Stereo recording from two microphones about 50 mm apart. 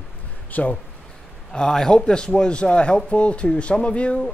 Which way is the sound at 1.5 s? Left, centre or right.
Centre.